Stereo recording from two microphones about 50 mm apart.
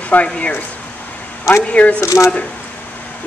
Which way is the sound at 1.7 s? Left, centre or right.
Left.